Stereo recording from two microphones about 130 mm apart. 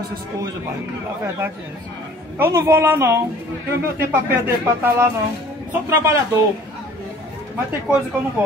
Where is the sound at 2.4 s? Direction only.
20° right (ahead or behind).